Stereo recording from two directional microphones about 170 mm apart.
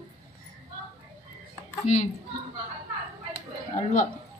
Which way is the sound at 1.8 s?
45° left (ahead or behind).